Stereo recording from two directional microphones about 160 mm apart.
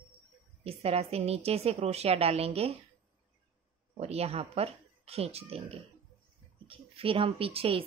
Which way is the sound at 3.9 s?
40° right (ahead or behind).